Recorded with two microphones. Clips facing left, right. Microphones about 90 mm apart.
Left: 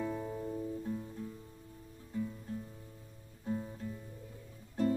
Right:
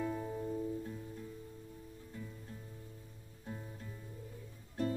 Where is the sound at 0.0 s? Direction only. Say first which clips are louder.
Left 1 dB; centre (ahead or behind).